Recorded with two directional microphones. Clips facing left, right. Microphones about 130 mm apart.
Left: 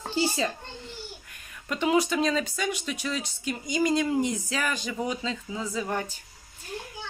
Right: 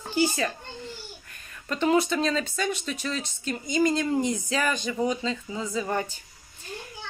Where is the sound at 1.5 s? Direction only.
10° left (ahead or behind).